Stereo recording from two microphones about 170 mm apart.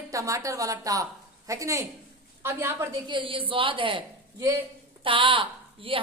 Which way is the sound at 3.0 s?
30° right (ahead or behind).